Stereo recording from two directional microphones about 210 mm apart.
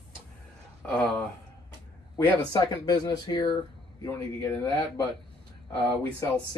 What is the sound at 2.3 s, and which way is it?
Speech, 20° left (ahead or behind).